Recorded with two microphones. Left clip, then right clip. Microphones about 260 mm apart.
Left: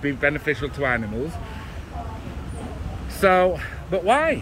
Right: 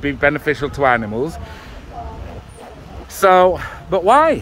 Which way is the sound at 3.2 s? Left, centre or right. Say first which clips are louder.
Right 6 dB; centre.